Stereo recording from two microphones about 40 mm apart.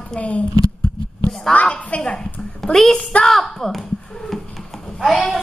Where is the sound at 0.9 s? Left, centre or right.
Centre.